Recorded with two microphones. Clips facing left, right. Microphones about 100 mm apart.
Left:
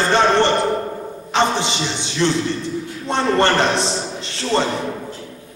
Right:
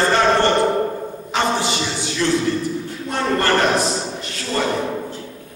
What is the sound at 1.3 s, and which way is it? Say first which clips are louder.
A man's voice: left 2 dB; 25° left (ahead or behind).